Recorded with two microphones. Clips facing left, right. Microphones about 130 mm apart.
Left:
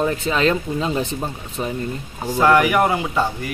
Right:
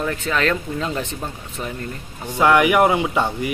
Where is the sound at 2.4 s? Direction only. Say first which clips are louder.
Right 1 dB; 15° right (ahead or behind).